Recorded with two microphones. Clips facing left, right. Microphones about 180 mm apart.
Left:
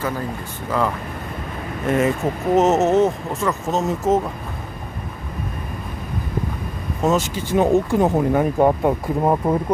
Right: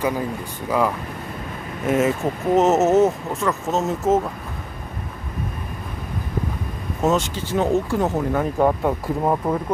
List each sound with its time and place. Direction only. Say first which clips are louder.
0.7 s speech: right 1 dB; 10° right (ahead or behind)
7.0 s speech: left 1 dB; centre (ahead or behind)
7.3 s speech: left 3 dB; 15° left (ahead or behind)